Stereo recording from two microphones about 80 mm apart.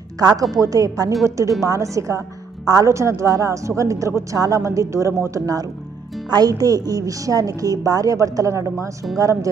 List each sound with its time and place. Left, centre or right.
0.2 s a woman's voice: right
0.6 s a woman's voice: right